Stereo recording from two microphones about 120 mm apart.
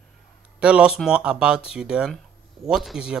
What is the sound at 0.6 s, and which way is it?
Speech, 10° right (ahead or behind).